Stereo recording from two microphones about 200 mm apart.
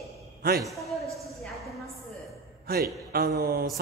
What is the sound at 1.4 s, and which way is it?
Speech, centre (ahead or behind).